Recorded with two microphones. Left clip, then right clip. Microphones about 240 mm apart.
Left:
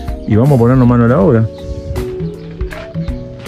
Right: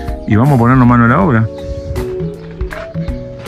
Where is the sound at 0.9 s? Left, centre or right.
Centre.